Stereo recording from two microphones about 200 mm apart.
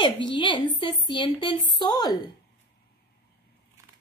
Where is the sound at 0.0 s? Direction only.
25° left (ahead or behind).